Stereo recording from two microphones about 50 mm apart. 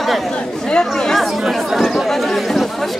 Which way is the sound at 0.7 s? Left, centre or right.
Centre.